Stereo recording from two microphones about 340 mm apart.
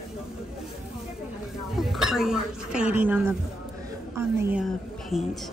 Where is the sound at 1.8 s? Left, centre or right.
Centre.